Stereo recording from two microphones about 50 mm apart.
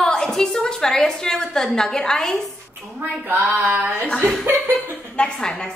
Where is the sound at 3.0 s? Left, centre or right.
Right.